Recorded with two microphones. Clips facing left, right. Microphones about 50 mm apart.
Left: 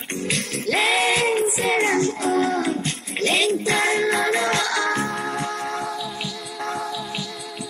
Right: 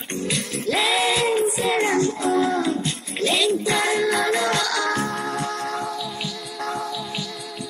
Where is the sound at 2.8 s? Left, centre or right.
Left.